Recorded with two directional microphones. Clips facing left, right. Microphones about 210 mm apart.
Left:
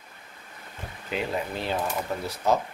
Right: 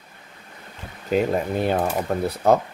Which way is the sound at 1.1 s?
50° right (ahead or behind).